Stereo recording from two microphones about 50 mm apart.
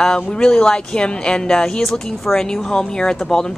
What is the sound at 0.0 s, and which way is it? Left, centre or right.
Speech, centre.